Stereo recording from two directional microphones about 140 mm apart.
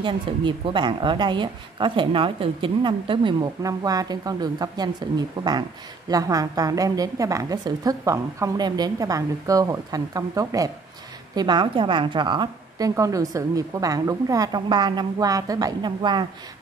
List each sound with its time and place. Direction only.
0.0 s a woman's voice: 35° right (ahead or behind)